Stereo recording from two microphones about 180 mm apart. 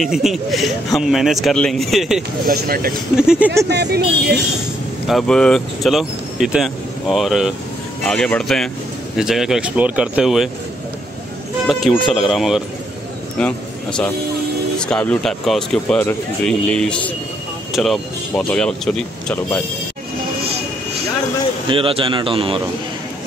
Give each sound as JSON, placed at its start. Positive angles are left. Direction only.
{"t": 0.0, "sound": "speech", "side_deg": 0}
{"t": 2.4, "sound": "speech", "side_deg": -55}
{"t": 3.2, "sound": "speech", "side_deg": -5}
{"t": 3.6, "sound": "speech", "side_deg": -65}
{"t": 5.0, "sound": "speech", "side_deg": 0}
{"t": 11.6, "sound": "speech", "side_deg": 0}
{"t": 21.6, "sound": "a man's voice", "side_deg": -30}